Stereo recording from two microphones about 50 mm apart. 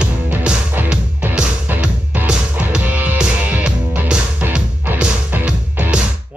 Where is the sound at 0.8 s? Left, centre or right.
Right.